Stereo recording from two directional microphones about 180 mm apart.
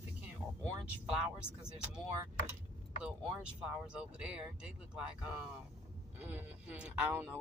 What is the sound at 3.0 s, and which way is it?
Speech, 5° right (ahead or behind).